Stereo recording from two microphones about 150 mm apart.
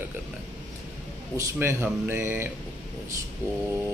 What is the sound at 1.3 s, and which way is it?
Speech, 20° right (ahead or behind).